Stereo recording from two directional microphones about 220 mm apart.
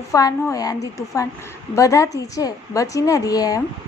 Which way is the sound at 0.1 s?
15° left (ahead or behind).